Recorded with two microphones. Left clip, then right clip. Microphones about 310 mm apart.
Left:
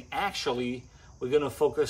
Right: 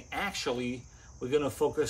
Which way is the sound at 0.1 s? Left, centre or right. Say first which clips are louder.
Left 3 dB; centre.